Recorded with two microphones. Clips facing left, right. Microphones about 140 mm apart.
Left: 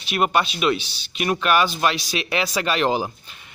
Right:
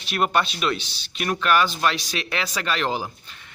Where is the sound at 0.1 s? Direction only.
5° left (ahead or behind).